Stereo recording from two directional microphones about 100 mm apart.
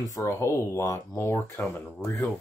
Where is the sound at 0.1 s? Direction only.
30° left (ahead or behind).